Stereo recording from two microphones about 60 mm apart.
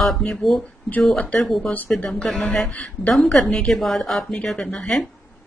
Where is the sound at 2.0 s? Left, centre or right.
Centre.